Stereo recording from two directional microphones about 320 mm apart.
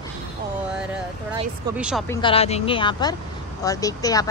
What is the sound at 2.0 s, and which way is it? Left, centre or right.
Speech, centre.